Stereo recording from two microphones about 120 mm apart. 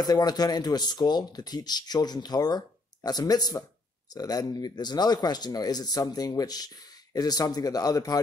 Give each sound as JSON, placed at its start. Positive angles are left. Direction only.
{"t": 0.0, "sound": "speech", "side_deg": 35}